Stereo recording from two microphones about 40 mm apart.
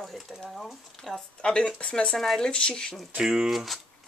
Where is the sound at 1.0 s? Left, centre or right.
Centre.